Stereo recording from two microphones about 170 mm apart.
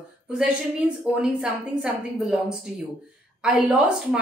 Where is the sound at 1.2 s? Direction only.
5° right (ahead or behind).